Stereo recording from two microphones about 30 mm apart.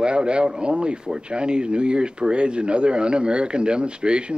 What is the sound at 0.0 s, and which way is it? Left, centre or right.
Speech, right.